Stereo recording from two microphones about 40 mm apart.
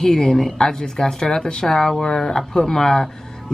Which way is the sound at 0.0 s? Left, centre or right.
Centre.